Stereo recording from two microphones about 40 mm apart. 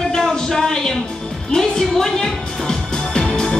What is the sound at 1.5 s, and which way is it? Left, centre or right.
Music, centre.